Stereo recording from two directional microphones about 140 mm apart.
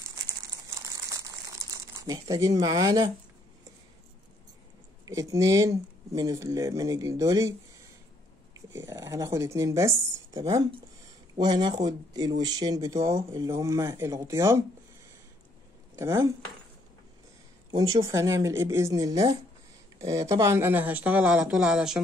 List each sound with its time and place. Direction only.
0.1 s crumpling: 20° right (ahead or behind)
5.0 s speech: 25° right (ahead or behind)
8.5 s speech: 20° right (ahead or behind)
16.0 s speech: 20° right (ahead or behind)
17.6 s speech: 25° right (ahead or behind); by 22.0 s 5° right (ahead or behind)